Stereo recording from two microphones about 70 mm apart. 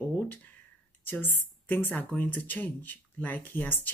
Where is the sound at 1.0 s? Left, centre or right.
Left.